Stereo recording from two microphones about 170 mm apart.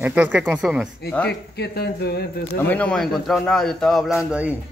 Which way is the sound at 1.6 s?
70° left (ahead or behind).